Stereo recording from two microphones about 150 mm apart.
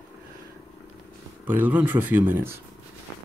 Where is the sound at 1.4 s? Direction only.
10° right (ahead or behind).